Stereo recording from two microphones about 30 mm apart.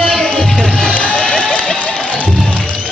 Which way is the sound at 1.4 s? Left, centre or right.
Left.